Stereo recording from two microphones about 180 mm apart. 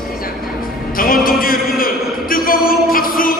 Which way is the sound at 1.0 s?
55° left (ahead or behind).